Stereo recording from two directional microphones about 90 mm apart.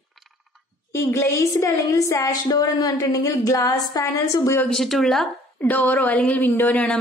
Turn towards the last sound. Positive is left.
turn(degrees=15)  # may be behind; listen again after turning